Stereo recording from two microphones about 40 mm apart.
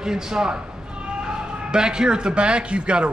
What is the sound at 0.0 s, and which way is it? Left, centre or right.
A man's voice, centre.